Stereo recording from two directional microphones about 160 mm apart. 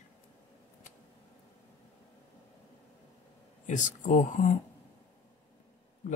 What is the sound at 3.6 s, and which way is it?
Speech, 50° left (ahead or behind).